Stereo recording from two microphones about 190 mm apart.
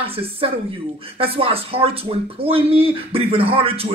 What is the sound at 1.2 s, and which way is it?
Speech, 30° right (ahead or behind).